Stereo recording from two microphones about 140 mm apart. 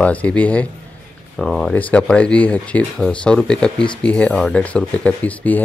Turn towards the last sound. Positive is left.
turn(degrees=10)  # may be behind; listen again after turning